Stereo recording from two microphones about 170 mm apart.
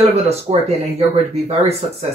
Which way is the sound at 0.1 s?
40° right (ahead or behind).